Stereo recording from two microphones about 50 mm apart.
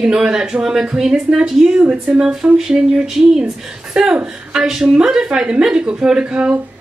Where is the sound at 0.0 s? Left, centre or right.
Centre.